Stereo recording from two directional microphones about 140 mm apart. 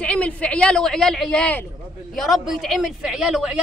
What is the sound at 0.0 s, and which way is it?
A woman's voice, 10° left (ahead or behind).